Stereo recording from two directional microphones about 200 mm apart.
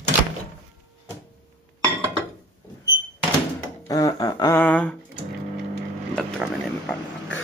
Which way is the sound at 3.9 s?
20° left (ahead or behind).